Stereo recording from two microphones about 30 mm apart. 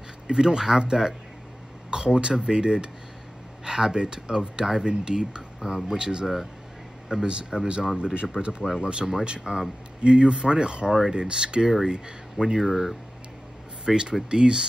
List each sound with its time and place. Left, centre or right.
0.3 s speech: right
8.0 s speech: right
12.5 s speech: centre
13.8 s speech: right